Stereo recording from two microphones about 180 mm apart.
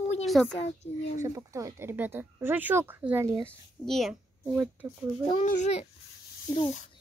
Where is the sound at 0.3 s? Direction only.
Centre (ahead or behind).